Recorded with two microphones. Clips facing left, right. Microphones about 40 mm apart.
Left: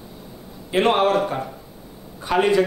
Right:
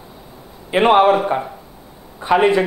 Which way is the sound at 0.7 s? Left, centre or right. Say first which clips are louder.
Right 6 dB; centre.